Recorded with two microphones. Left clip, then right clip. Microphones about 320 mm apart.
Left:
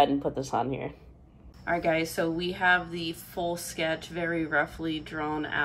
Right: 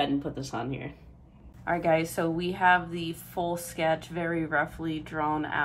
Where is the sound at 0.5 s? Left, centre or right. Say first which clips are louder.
Left 5 dB; left.